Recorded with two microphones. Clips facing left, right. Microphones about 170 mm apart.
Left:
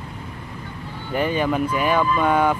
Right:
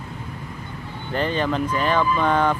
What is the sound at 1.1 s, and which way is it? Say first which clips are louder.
Speech: left 2 dB; 10° left (ahead or behind).